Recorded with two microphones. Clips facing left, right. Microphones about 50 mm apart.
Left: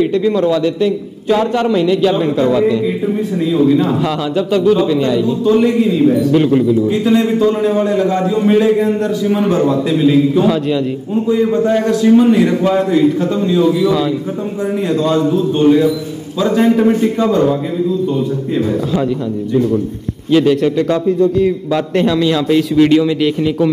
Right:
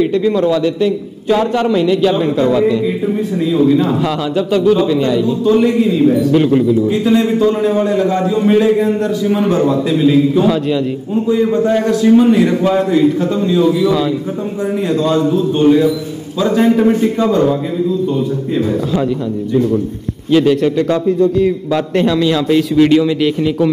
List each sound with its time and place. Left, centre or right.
0.0 s a man's voice: centre
4.0 s a man's voice: centre
5.4 s a man's voice: centre
9.8 s a man's voice: centre
10.4 s a man's voice: centre
11.8 s a man's voice: centre
20.2 s a man's voice: centre